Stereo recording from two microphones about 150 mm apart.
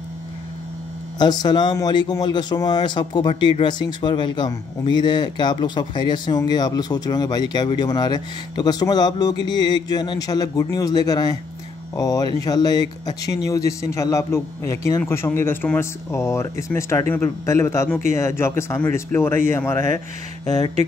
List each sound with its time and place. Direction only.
1.1 s a man's voice: 25° left (ahead or behind)